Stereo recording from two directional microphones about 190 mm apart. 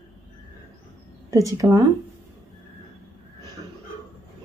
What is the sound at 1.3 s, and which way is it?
Speech, 15° right (ahead or behind).